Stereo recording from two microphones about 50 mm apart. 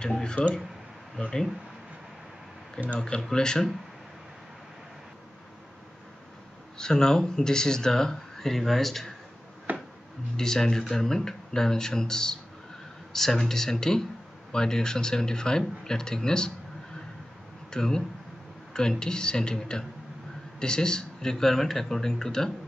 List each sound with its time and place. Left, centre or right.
0.0 s speech: centre
3.0 s speech: centre
6.8 s speech: centre
9.7 s a sound: right
10.3 s speech: centre
17.6 s speech: centre